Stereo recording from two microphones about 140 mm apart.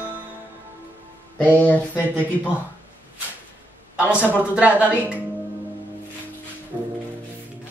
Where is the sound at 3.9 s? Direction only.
10° right (ahead or behind).